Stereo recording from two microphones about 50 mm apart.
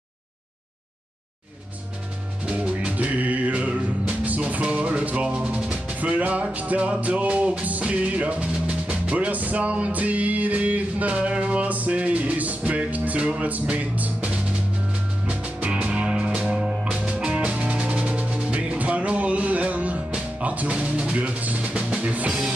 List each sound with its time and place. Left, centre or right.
2.4 s music: right